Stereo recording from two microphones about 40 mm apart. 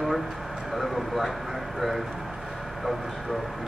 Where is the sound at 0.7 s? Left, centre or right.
Centre.